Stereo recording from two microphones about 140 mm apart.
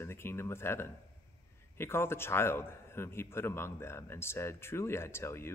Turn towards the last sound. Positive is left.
turn(degrees=20)  # may be behind; listen again after turning